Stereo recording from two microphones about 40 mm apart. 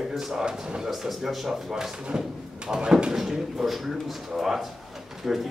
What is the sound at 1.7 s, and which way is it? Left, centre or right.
A man's voice, centre.